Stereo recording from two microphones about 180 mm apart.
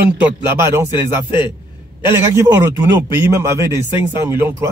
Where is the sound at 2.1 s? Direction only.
15° right (ahead or behind).